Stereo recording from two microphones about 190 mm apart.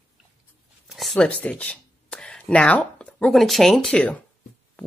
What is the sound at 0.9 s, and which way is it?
Speech, centre (ahead or behind).